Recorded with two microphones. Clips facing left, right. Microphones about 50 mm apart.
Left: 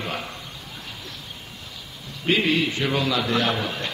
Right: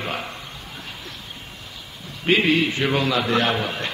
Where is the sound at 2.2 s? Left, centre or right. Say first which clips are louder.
Right 3 dB; right.